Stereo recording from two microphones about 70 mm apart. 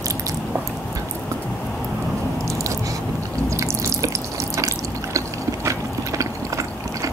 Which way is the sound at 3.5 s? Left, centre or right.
Right.